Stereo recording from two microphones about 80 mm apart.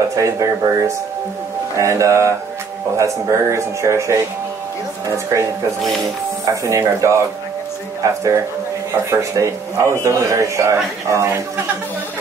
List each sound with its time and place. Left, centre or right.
0.1 s a man's voice: right